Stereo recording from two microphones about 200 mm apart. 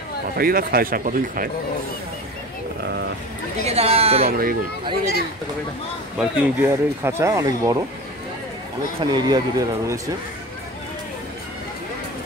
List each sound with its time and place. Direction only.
0.4 s speech: 45° right (ahead or behind)
3.6 s speech: 30° right (ahead or behind)
4.3 s speech: 50° right (ahead or behind)
6.1 s speech: 10° right (ahead or behind)
9.0 s speech: 20° right (ahead or behind)